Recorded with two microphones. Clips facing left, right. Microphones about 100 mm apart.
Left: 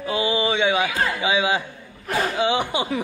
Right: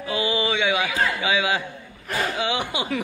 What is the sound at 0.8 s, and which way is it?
Speech, 25° left (ahead or behind).